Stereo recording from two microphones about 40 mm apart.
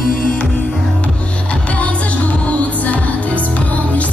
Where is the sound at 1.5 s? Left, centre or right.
Left.